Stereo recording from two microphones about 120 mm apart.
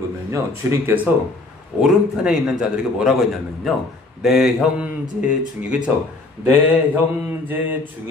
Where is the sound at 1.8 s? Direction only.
5° right (ahead or behind).